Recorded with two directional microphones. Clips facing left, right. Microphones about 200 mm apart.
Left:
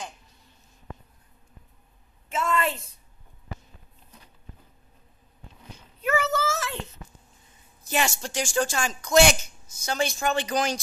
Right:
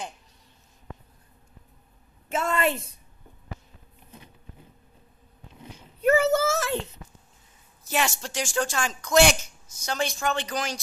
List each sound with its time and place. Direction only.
2.5 s a woman's voice: 20° right (ahead or behind)
6.0 s a sound: 35° right (ahead or behind)
7.9 s speech: centre (ahead or behind)
10.5 s speech: 20° left (ahead or behind)